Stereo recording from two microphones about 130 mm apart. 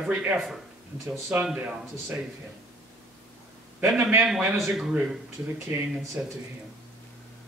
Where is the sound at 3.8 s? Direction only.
5° right (ahead or behind).